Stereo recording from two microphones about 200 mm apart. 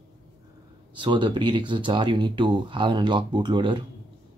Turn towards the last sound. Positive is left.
turn(degrees=-20)  # may be behind; listen again after turning